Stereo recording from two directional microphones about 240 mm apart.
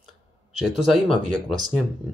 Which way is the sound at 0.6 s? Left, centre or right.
Centre.